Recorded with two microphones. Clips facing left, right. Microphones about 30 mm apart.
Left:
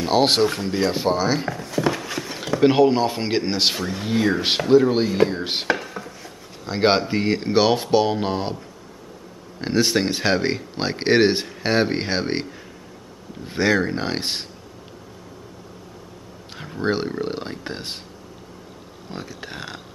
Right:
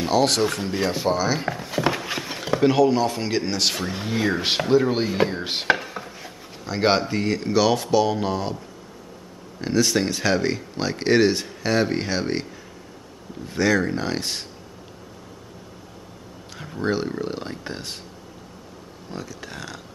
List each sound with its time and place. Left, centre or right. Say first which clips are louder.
0.1 s speech: left 2 dB; left
0.7 s speech: left 2 dB; centre
1.4 s speech: left 1 dB; centre
2.6 s speech: left 2 dB; left
4.0 s speech: left 3 dB; centre
5.4 s speech: left 2 dB; centre
5.7 s chopping: right 2 dB; centre
6.6 s speech: left 2 dB; centre
9.6 s speech: left 1 dB; left
13.5 s speech: left 1 dB; left
16.5 s a sound: left 2 dB; centre
17.1 s speech: left 2 dB; centre
19.0 s speech: left 1 dB; left